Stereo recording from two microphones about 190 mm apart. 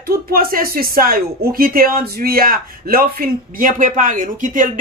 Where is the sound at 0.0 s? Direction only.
50° right (ahead or behind).